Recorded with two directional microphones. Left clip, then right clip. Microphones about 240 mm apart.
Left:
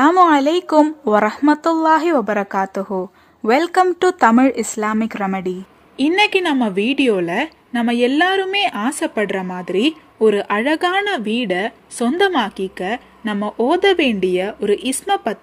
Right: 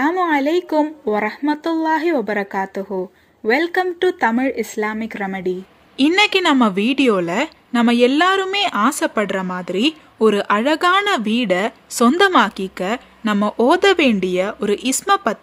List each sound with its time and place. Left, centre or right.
0.0 s a woman's voice: centre
5.9 s a woman's voice: centre